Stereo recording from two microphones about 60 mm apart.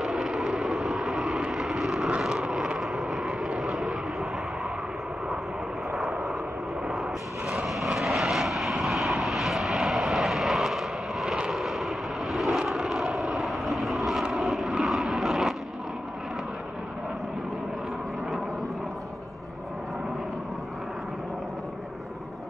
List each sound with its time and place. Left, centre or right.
0.0 s vehicle: centre
2.0 s vehicle: centre
3.3 s vehicle: centre
3.6 s vehicle: centre
5.9 s vehicle: centre